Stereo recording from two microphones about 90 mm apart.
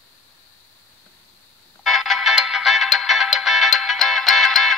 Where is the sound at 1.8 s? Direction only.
Centre (ahead or behind).